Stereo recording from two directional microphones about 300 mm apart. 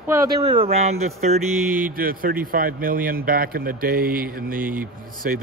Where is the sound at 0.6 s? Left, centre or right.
Right.